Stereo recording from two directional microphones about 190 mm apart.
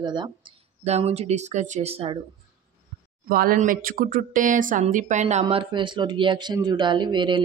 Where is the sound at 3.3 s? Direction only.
50° right (ahead or behind); by 7.4 s 25° right (ahead or behind).